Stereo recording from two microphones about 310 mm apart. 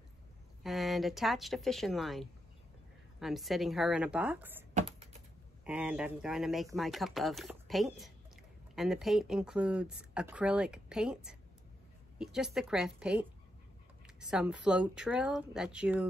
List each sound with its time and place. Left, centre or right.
0.7 s speech: centre
4.7 s a sound: centre
5.6 s speech: centre